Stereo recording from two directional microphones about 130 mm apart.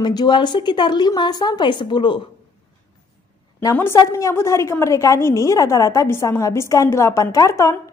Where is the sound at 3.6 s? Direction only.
20° left (ahead or behind).